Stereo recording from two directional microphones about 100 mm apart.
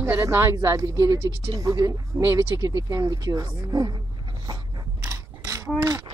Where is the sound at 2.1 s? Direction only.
25° right (ahead or behind).